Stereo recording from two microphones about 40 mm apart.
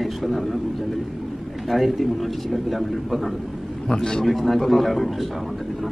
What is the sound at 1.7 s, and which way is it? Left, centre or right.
A man's voice, centre.